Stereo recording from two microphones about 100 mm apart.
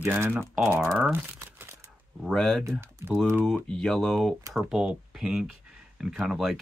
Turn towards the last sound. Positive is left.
turn(degrees=-5)  # may be behind; listen again after turning